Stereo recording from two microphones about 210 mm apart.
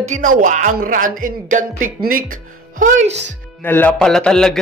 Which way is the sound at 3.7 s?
5° left (ahead or behind).